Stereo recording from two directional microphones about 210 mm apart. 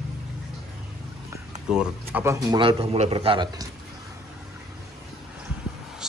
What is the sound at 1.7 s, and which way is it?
A man's voice, 5° right (ahead or behind).